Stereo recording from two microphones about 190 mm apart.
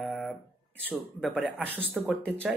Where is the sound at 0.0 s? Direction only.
Centre (ahead or behind).